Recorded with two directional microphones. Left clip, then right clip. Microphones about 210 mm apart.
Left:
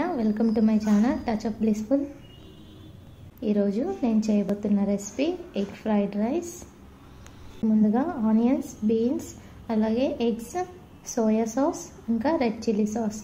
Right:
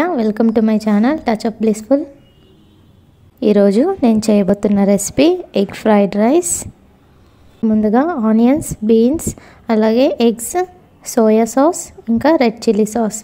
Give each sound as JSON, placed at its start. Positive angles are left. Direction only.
{"t": 0.0, "sound": "a woman's voice", "side_deg": -45}
{"t": 3.3, "sound": "a woman's voice", "side_deg": -45}